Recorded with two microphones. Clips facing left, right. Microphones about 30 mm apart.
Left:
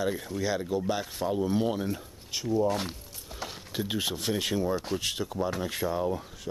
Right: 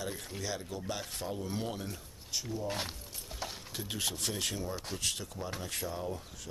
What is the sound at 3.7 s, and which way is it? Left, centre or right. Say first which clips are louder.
Speech: left 8 dB; centre.